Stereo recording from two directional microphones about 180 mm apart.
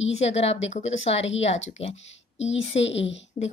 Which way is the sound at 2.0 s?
90° left.